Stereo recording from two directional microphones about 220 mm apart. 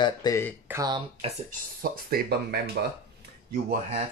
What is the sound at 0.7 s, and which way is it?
Speech, 15° right (ahead or behind).